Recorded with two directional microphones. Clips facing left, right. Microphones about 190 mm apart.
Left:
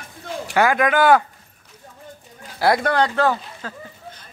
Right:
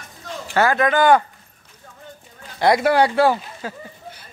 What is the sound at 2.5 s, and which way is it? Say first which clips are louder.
Speech: right 2 dB; centre (ahead or behind).